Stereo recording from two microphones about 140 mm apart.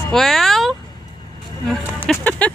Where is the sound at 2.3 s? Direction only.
10° left (ahead or behind).